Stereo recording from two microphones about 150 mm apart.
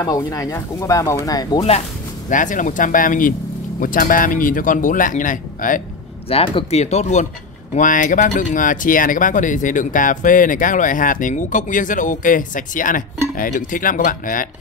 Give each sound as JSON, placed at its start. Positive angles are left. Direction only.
{"t": 0.0, "sound": "speech", "side_deg": 25}
{"t": 2.2, "sound": "speech", "side_deg": 60}
{"t": 6.2, "sound": "speech", "side_deg": 40}